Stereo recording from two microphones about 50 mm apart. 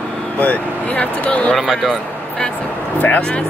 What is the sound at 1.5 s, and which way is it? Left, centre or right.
Speech, centre.